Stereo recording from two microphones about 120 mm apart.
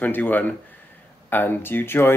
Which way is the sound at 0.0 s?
15° left (ahead or behind).